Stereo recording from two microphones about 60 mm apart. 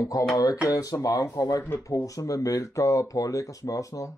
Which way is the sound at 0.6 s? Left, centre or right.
Left.